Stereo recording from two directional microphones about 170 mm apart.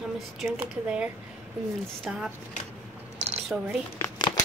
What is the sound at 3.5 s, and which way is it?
Speech, 5° right (ahead or behind).